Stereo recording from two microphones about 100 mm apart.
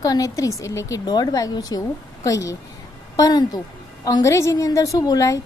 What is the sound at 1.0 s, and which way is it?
A woman's voice, 45° left (ahead or behind).